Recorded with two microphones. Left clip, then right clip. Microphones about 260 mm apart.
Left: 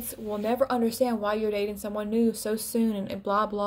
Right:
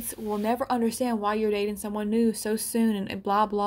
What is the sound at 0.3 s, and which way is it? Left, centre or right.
Speech, right.